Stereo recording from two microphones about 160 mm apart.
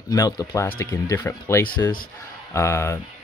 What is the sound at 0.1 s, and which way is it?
Speech, 25° left (ahead or behind).